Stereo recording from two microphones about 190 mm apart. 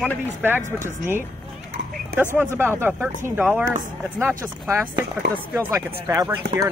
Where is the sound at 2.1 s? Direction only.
10° right (ahead or behind).